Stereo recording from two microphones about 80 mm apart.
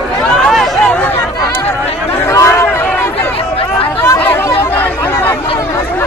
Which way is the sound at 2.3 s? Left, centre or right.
Left.